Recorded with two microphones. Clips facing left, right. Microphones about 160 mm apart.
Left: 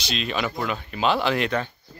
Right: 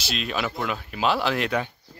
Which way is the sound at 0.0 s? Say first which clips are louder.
Left 1 dB; 5° right (ahead or behind).